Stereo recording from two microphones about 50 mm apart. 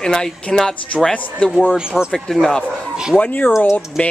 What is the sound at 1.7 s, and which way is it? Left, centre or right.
Speech, centre.